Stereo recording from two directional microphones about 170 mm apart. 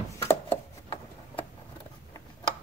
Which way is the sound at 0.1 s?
15° left (ahead or behind).